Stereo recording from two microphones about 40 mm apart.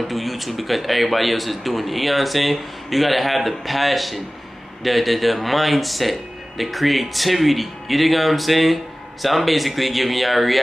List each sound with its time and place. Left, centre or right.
0.1 s speech: centre